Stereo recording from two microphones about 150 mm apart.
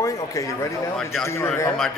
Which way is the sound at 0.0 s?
20° left (ahead or behind).